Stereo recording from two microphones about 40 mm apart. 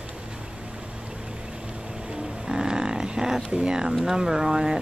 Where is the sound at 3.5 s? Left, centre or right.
Right.